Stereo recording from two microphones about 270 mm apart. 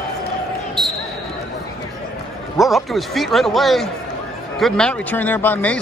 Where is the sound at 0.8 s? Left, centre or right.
Centre.